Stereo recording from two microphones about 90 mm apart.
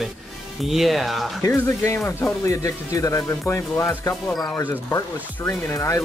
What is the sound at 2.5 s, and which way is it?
Speech, 40° left (ahead or behind).